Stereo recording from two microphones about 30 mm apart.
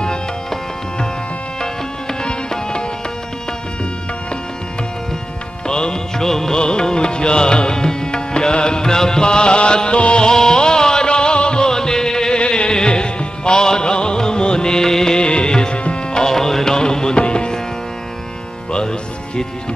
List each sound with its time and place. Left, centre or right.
2.5 s music: left
5.7 s music: left
6.6 s music: left
10.2 s music: left
12.4 s music: left; by 15.1 s centre
15.1 s music: left
15.8 s music: left
16.2 s music: centre; by 17.6 s left
18.7 s music: left